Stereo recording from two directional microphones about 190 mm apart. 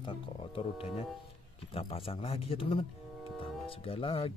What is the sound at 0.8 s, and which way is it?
Speech, 30° left (ahead or behind).